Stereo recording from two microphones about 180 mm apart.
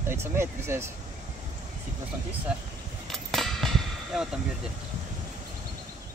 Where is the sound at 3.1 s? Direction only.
Centre (ahead or behind).